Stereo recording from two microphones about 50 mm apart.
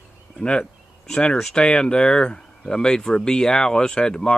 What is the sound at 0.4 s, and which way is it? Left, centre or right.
Speech, centre.